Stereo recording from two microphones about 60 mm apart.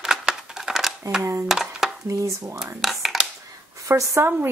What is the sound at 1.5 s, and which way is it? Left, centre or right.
Speech, centre.